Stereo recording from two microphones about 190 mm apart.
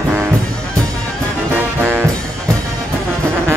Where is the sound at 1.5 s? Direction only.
10° right (ahead or behind).